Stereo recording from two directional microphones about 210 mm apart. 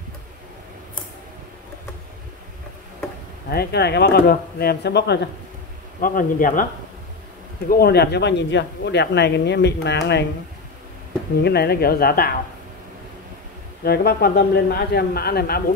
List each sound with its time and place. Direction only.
3.4 s speech: 50° left (ahead or behind)
5.9 s speech: 40° left (ahead or behind)
7.7 s speech: 50° left (ahead or behind)
11.4 s speech: 50° left (ahead or behind)
13.8 s speech: 50° left (ahead or behind)